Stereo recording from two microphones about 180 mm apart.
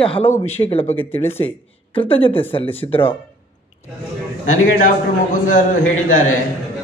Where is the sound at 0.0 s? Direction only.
35° left (ahead or behind).